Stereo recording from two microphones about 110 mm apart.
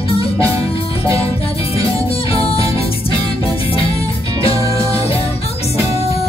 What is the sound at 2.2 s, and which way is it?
Music, 60° left (ahead or behind).